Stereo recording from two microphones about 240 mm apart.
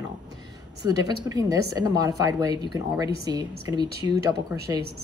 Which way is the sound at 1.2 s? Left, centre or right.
Centre.